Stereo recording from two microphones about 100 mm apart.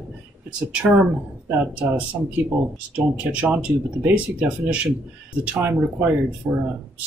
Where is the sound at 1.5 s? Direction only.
15° right (ahead or behind).